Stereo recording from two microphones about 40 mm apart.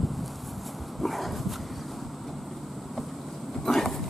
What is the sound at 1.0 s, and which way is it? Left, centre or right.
Dog, centre.